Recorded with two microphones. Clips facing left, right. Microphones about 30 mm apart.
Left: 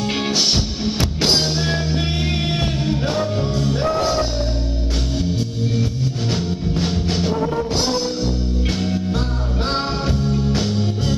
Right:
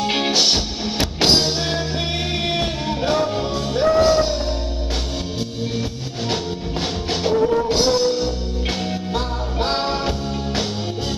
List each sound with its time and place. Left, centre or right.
0.0 s music: centre
6.3 s music: centre